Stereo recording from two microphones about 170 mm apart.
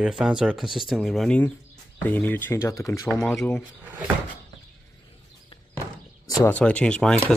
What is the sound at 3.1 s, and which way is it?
Speech, 5° left (ahead or behind).